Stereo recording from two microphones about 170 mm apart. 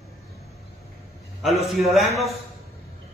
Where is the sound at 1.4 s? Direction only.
Centre (ahead or behind).